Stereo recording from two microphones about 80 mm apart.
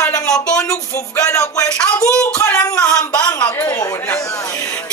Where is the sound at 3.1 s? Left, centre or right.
Left.